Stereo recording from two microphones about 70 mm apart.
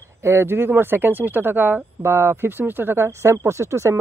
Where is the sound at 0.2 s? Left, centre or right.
Right.